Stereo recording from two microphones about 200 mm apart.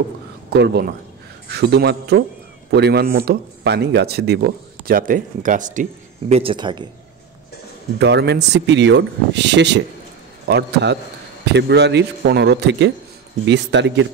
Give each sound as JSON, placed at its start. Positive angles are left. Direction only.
{"t": 0.5, "sound": "speech", "side_deg": -55}
{"t": 8.0, "sound": "speech", "side_deg": -60}